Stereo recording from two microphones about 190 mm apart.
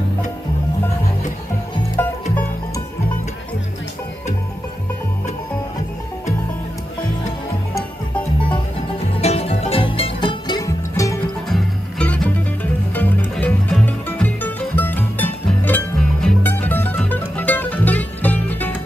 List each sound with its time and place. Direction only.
2.0 s music: 10° left (ahead or behind)
9.1 s music: 30° left (ahead or behind); by 11.1 s 15° left (ahead or behind)
11.4 s music: 5° left (ahead or behind)